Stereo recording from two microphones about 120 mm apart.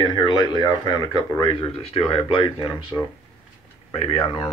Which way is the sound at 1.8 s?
55° left (ahead or behind).